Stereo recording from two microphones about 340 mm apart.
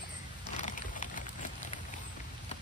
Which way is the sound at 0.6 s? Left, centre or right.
Left.